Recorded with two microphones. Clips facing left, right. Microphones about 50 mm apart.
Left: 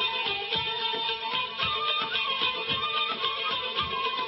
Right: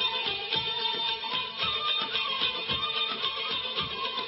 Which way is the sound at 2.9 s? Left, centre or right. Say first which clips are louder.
Left 3 dB; centre.